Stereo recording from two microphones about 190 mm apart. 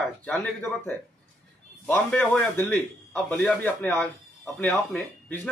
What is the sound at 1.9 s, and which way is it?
A man's voice, 5° left (ahead or behind).